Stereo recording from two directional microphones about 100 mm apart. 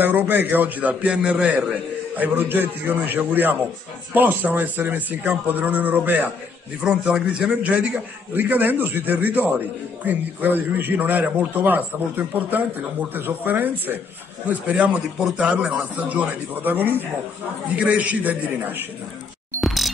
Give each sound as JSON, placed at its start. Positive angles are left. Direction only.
{"t": 0.0, "sound": "a man's voice", "side_deg": -20}
{"t": 19.6, "sound": "music", "side_deg": 0}